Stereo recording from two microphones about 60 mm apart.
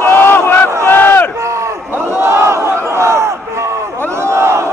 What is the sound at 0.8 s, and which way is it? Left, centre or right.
Crowd, left.